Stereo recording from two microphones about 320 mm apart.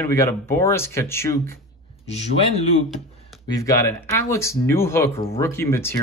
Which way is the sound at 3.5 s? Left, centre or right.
Centre.